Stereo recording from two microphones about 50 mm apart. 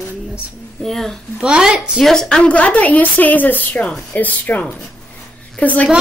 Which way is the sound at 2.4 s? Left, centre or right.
Left.